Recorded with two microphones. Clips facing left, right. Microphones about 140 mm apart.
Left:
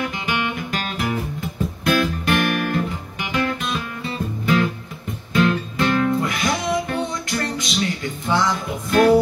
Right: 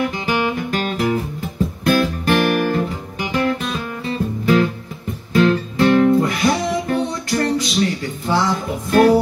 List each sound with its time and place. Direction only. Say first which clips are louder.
0.0 s music: right 5 dB; 35° right (ahead or behind)
5.3 s music: right 4 dB; 35° right (ahead or behind)